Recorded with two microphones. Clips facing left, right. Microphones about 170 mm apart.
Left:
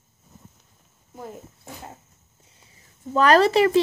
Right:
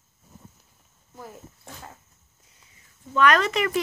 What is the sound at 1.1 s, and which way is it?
Dog, 20° left (ahead or behind).